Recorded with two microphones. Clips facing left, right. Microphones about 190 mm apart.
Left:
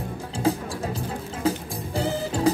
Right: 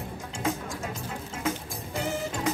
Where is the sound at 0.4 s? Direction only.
35° left (ahead or behind).